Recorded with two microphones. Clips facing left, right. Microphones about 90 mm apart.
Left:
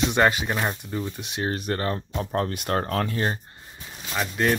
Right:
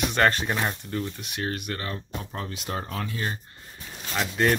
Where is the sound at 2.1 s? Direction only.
50° left (ahead or behind).